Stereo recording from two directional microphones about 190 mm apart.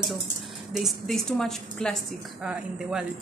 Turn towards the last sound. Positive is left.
turn(degrees=-5)  # may be behind; listen again after turning